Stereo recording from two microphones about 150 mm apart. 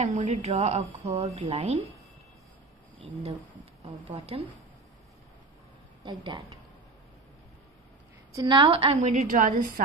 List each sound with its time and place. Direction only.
0.0 s speech: 50° right (ahead or behind)
3.0 s a woman's voice: 45° right (ahead or behind)
6.0 s a woman's voice: 30° right (ahead or behind)
8.4 s a woman's voice: 30° right (ahead or behind)
9.1 s a woman's voice: 60° right (ahead or behind)